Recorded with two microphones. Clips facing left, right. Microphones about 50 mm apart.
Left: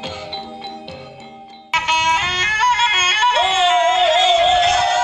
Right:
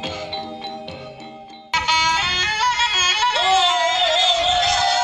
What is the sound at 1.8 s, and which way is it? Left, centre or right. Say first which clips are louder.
Music: left 2 dB; left.